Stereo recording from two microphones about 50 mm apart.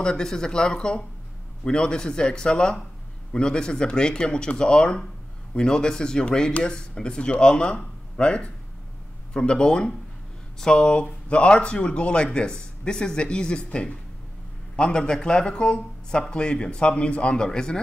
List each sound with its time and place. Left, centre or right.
0.0 s speech: centre